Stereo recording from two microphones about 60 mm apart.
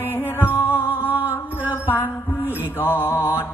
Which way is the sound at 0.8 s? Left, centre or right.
Right.